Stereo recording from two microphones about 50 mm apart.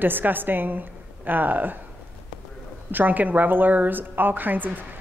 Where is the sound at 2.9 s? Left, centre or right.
Right.